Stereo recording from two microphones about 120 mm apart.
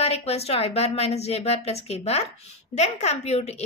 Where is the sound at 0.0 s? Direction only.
60° left (ahead or behind).